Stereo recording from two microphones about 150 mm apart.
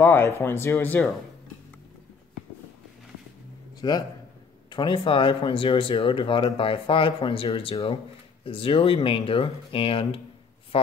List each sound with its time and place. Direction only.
0.0 s speech: 15° left (ahead or behind)
3.8 s a man's voice: 30° left (ahead or behind)